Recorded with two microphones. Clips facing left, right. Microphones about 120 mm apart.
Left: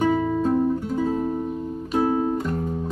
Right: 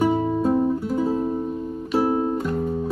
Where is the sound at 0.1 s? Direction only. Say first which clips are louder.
Even; 25° right (ahead or behind).